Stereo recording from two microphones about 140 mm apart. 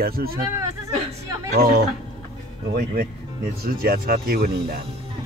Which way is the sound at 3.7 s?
90° right.